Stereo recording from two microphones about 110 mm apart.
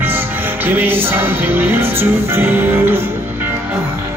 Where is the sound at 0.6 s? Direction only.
20° right (ahead or behind).